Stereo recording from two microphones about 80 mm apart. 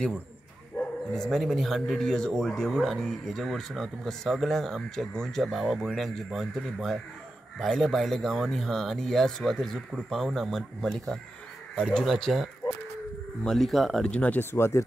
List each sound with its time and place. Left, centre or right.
0.7 s speech: centre
14.0 s speech: centre
14.4 s speech: left